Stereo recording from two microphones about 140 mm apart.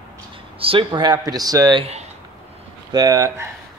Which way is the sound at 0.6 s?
40° right (ahead or behind).